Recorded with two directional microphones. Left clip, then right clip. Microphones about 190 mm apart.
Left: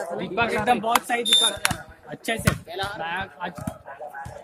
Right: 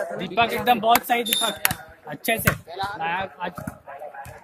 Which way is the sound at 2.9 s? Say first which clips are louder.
Right 3 dB; 50° right (ahead or behind).